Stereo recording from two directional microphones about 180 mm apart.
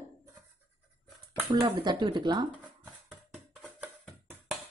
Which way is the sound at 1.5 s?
25° right (ahead or behind).